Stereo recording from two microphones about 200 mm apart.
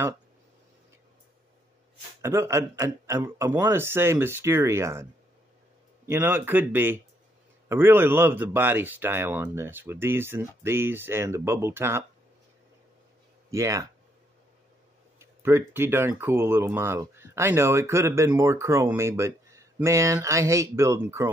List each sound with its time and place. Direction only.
2.2 s speech: 15° right (ahead or behind)
6.0 s speech: 10° right (ahead or behind)
13.5 s speech: 15° right (ahead or behind)
15.1 s speech: 10° right (ahead or behind)